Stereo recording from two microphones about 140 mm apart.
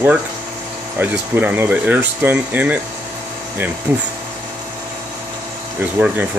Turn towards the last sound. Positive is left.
turn(degrees=-10)  # may be behind; listen again after turning